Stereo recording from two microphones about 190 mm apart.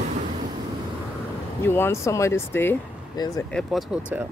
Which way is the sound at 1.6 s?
10° left (ahead or behind).